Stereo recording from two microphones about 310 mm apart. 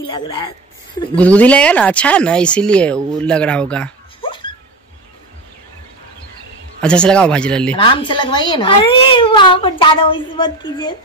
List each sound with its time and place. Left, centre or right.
0.0 s speech: centre
4.2 s a sound: centre
6.8 s speech: centre
7.7 s speech: centre